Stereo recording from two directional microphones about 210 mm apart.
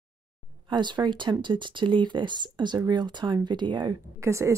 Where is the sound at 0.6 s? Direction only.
20° right (ahead or behind).